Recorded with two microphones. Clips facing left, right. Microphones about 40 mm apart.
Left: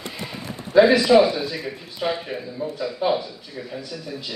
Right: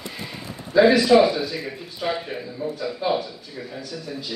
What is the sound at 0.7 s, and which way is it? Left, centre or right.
Speech, left.